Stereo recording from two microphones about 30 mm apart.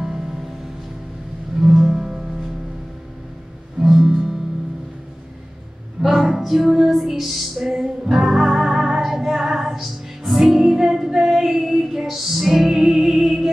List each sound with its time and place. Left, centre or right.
1.6 s music: centre
3.8 s music: centre
6.0 s a sound: centre
6.4 s music: centre